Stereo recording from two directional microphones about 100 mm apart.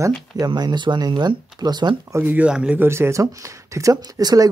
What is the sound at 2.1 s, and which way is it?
Speech, 15° right (ahead or behind).